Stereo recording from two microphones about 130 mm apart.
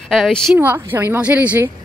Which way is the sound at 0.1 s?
Centre (ahead or behind).